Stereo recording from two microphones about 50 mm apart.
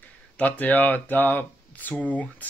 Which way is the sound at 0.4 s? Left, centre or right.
Left.